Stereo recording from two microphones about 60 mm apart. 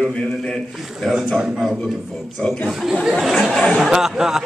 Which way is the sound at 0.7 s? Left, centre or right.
Centre.